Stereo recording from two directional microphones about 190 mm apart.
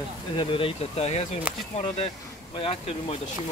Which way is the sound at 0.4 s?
25° left (ahead or behind).